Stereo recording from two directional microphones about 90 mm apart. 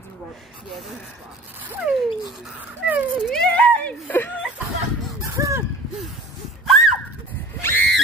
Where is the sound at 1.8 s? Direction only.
10° right (ahead or behind).